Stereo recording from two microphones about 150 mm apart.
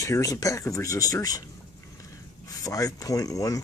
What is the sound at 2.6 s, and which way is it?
Speech, 25° left (ahead or behind).